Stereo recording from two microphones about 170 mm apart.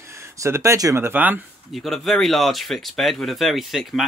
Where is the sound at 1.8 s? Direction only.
Centre (ahead or behind).